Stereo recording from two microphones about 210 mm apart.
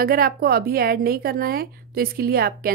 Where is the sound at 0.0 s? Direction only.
45° right (ahead or behind).